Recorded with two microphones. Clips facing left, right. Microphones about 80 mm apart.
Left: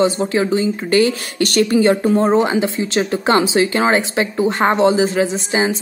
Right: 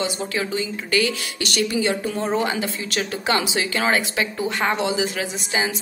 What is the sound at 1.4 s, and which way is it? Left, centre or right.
A woman's voice, left.